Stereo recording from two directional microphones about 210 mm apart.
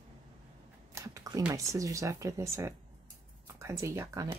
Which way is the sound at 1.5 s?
15° right (ahead or behind).